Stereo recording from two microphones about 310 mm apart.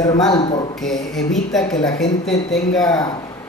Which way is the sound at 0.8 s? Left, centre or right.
Centre.